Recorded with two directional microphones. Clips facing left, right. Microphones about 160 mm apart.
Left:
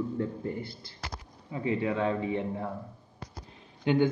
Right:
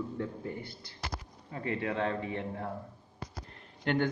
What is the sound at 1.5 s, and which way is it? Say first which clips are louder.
Speech: left 5 dB; 15° left (ahead or behind).